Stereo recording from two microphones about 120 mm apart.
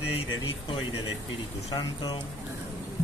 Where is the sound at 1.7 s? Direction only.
35° left (ahead or behind).